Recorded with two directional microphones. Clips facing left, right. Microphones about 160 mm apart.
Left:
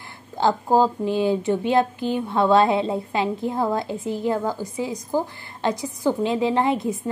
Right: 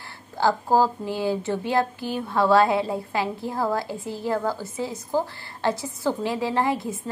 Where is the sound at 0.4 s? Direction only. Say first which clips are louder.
Left 2 dB; 20° left (ahead or behind).